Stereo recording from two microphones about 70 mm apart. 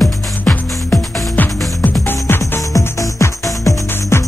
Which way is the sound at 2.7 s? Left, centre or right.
Left.